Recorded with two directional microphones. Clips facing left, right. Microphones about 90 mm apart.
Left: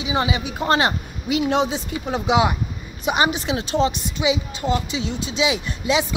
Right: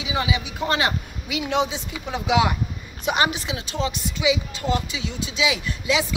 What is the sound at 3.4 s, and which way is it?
Speech, 35° left (ahead or behind).